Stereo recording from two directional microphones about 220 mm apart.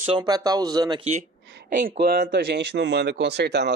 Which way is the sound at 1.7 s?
40° right (ahead or behind).